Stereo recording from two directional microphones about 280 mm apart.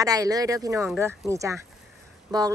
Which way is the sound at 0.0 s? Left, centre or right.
Centre.